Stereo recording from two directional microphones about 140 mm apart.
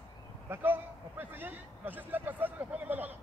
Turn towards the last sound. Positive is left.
turn(degrees=-15)  # may be behind; listen again after turning